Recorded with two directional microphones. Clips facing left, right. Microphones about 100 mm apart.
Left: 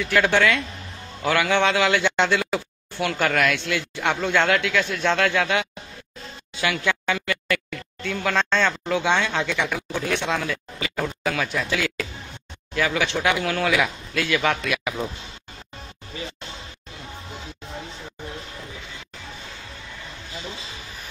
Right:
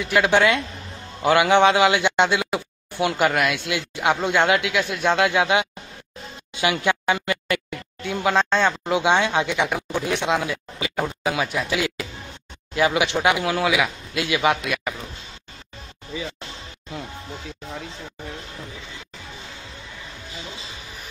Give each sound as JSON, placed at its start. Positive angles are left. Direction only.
{"t": 0.0, "sound": "speech", "side_deg": -15}